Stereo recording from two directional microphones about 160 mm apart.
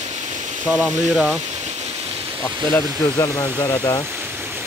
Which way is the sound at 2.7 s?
20° left (ahead or behind).